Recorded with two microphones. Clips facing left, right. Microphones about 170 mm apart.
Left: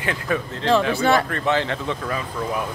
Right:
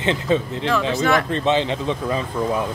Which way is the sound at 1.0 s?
30° left (ahead or behind).